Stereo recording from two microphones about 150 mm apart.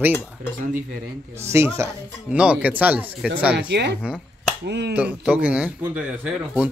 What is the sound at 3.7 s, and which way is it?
Speech, 90° right.